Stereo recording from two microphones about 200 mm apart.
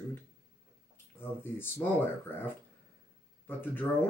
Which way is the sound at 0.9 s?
10° left (ahead or behind).